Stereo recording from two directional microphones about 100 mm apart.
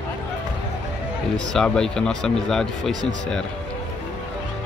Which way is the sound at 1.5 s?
5° left (ahead or behind).